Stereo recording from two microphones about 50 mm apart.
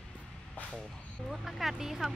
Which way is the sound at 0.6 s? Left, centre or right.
Left.